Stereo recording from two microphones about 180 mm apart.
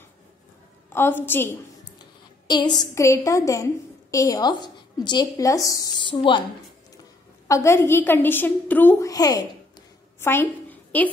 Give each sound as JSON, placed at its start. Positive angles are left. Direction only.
{"t": 0.9, "sound": "a woman's voice", "side_deg": 10}
{"t": 2.4, "sound": "a woman's voice", "side_deg": 25}
{"t": 7.4, "sound": "a woman's voice", "side_deg": 15}
{"t": 10.2, "sound": "a sound", "side_deg": 10}